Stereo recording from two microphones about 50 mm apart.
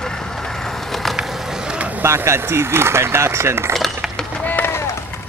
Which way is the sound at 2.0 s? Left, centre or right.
Right.